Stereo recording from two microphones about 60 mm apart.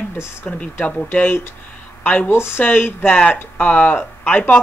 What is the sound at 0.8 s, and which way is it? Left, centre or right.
Speech, left.